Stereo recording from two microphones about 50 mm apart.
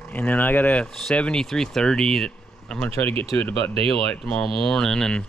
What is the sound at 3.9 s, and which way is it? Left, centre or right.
Speech, centre.